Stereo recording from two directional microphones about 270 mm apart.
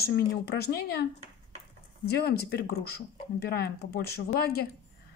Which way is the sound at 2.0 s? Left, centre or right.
Left.